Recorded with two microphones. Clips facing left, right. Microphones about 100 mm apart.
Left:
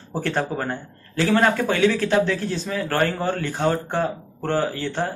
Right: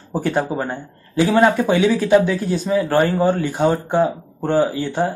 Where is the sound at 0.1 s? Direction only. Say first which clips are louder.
Right 4 dB; 15° right (ahead or behind).